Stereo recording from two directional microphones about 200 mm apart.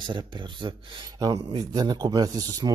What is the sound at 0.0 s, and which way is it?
A man's voice, 25° right (ahead or behind).